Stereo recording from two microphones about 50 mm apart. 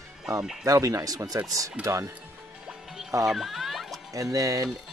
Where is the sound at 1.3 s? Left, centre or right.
Right.